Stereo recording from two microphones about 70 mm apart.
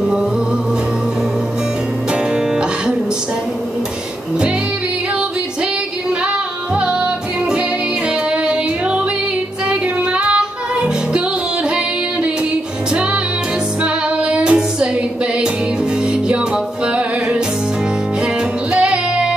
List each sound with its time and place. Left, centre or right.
9.7 s music: centre
14.3 s child singing: centre
16.8 s music: centre
18.7 s music: centre